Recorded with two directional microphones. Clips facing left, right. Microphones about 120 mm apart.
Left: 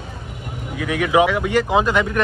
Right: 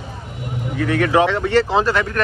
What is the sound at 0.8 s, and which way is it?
Speech, 10° left (ahead or behind).